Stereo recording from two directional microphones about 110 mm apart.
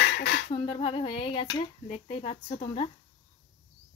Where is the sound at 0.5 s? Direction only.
60° left (ahead or behind).